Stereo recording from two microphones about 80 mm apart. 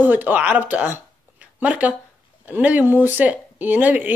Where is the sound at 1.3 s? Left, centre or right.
Centre.